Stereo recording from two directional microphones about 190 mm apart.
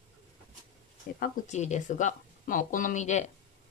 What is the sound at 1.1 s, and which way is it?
Speech, 45° left (ahead or behind).